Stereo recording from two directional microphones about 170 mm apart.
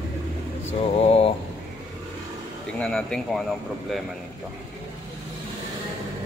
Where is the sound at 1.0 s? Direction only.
35° left (ahead or behind).